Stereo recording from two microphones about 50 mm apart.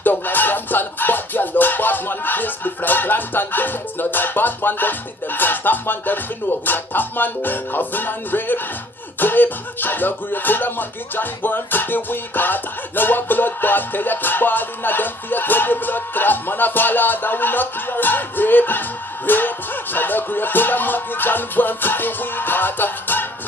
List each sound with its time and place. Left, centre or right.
0.0 s music: left
9.2 s speech: left